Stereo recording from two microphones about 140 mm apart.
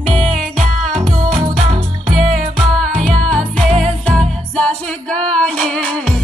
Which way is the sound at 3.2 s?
5° left (ahead or behind).